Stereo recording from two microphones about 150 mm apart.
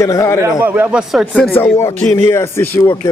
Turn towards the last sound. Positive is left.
turn(degrees=15)  # may be behind; listen again after turning